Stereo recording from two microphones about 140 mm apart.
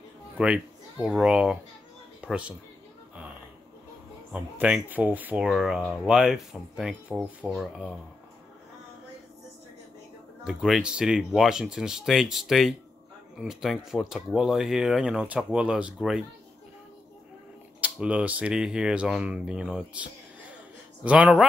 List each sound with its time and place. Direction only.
0.4 s speech: 5° right (ahead or behind)
4.3 s speech: 5° right (ahead or behind)
10.4 s speech: 5° right (ahead or behind)
17.7 s speech: 10° right (ahead or behind)